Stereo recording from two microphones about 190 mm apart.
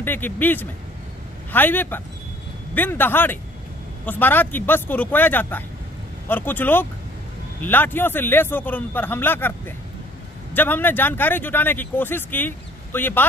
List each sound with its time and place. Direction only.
0.0 s speech: 10° left (ahead or behind)